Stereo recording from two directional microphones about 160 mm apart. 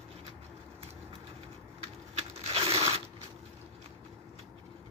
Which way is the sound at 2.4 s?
35° right (ahead or behind).